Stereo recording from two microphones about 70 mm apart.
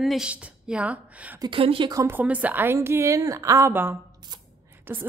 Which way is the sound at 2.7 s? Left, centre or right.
Right.